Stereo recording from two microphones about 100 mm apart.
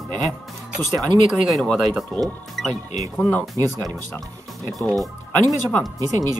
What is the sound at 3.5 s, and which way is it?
Speech, 35° right (ahead or behind).